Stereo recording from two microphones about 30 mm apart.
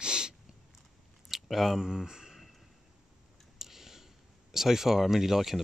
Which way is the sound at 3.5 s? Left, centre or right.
Centre.